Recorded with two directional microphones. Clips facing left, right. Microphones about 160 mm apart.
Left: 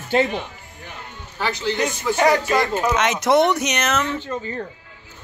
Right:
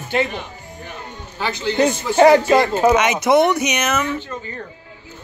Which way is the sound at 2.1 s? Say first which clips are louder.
Right 7 dB; 30° right (ahead or behind).